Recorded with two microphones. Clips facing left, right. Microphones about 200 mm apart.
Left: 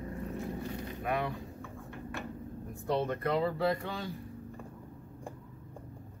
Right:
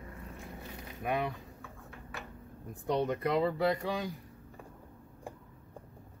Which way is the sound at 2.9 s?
20° right (ahead or behind).